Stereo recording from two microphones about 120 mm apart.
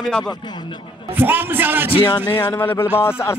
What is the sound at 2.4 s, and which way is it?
Speech, 25° left (ahead or behind).